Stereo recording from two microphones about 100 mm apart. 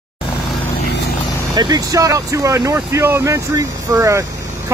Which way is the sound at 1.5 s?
40° right (ahead or behind).